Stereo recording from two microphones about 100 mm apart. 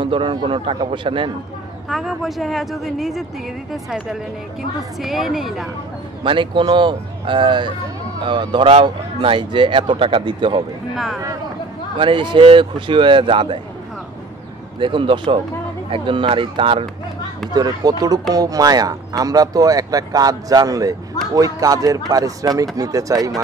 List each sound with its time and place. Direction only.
0.0 s speech: 55° right (ahead or behind)
1.9 s speech: centre (ahead or behind)
6.2 s speech: 55° right (ahead or behind)
12.0 s speech: 55° right (ahead or behind)
14.8 s speech: 55° right (ahead or behind)
17.6 s speech: 40° right (ahead or behind)